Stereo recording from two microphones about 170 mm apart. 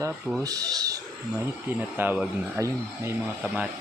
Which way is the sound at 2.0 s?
10° right (ahead or behind).